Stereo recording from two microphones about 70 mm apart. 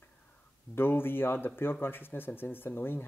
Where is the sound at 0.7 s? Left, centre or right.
Left.